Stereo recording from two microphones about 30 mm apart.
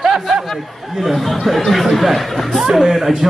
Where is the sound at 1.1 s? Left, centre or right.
Centre.